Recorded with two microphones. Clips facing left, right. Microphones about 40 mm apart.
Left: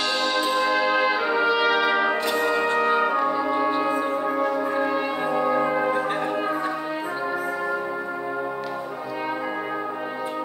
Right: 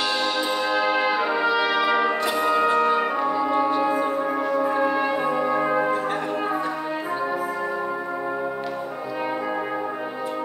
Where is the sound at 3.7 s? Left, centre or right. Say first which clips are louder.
Right 1 dB; centre.